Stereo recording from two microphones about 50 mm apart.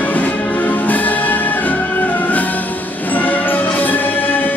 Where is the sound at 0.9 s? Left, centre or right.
Left.